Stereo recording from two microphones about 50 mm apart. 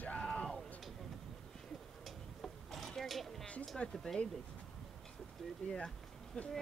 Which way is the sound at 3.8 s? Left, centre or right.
Centre.